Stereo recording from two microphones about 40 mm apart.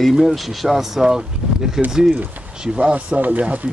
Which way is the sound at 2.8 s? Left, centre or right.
Right.